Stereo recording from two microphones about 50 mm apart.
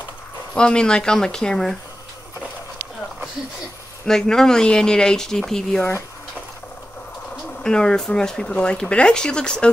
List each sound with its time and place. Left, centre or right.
0.6 s speech: centre
4.1 s speech: centre
7.6 s speech: centre